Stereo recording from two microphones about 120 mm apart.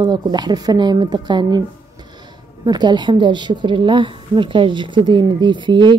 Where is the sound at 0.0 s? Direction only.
35° right (ahead or behind).